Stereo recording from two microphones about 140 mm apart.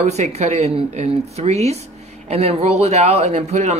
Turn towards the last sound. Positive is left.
turn(degrees=-55)  # may be behind; listen again after turning